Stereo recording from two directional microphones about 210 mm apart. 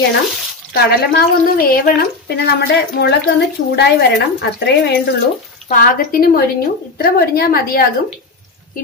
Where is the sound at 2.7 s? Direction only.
55° left (ahead or behind).